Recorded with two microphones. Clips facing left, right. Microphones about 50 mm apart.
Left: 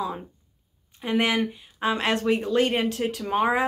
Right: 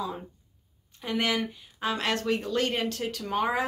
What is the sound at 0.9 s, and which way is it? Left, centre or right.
Speech, left.